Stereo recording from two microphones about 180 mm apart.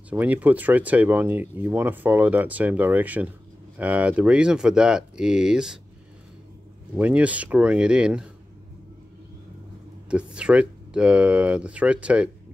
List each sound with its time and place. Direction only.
0.1 s speech: 10° right (ahead or behind)
7.0 s speech: 5° right (ahead or behind)
10.0 s speech: 5° right (ahead or behind)